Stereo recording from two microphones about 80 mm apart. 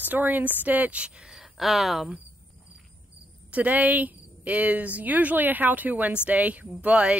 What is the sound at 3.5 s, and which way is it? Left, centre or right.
A woman's voice, centre.